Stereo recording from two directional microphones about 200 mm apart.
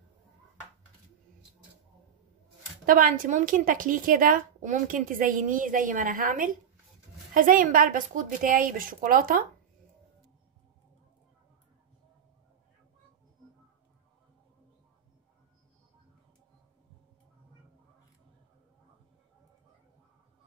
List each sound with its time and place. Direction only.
2.9 s a woman's voice: 45° right (ahead or behind)